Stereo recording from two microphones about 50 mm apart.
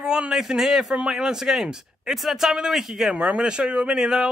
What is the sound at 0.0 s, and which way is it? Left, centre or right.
A man's voice, centre.